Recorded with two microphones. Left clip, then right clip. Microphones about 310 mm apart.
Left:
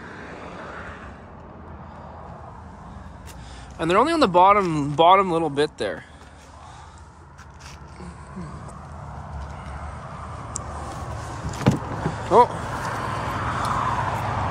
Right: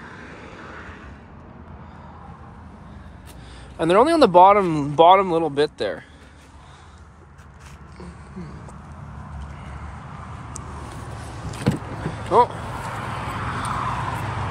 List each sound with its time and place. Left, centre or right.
0.0 s vehicle: left
3.7 s speech: centre
11.7 s vehicle: left